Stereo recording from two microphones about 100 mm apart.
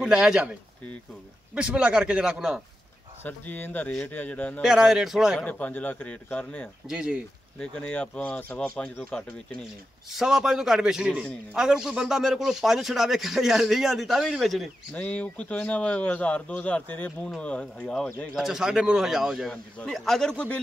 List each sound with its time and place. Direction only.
0.0 s a man's voice: 10° right (ahead or behind)
3.3 s a man's voice: 20° left (ahead or behind)
4.6 s speech: 5° right (ahead or behind)
5.4 s a man's voice: 15° left (ahead or behind)
6.9 s a man's voice: 10° right (ahead or behind)
7.5 s a man's voice: 10° left (ahead or behind)
10.1 s speech: 5° right (ahead or behind)
15.0 s a man's voice: 15° left (ahead or behind)
18.3 s speech: 5° right (ahead or behind)